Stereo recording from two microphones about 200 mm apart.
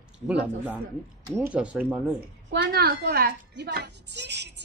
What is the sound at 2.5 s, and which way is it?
A woman's voice, 55° right (ahead or behind).